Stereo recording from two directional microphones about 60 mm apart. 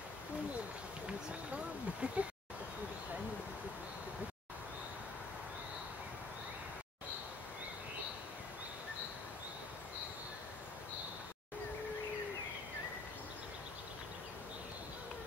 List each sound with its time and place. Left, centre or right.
1.0 s speech: centre